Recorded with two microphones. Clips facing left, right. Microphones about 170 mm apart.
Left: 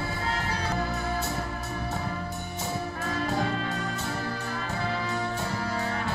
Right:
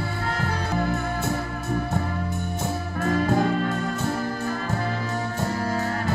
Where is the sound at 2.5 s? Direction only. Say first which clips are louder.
Right 1 dB; 50° right (ahead or behind).